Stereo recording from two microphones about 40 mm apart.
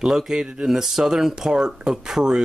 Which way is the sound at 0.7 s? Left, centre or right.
Centre.